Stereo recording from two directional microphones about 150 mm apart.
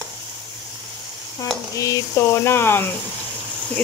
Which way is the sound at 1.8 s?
20° left (ahead or behind).